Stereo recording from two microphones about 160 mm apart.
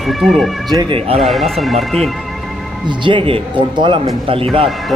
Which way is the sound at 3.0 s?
30° right (ahead or behind).